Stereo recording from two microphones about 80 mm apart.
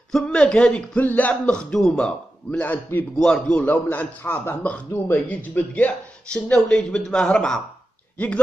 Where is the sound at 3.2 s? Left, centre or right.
Centre.